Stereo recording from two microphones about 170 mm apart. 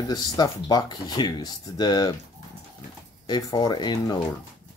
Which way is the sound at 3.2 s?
25° left (ahead or behind).